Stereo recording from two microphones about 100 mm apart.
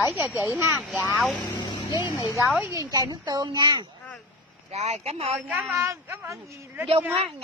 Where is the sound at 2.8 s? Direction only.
40° right (ahead or behind).